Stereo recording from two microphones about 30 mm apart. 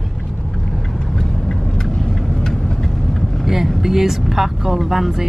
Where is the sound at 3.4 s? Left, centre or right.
Centre.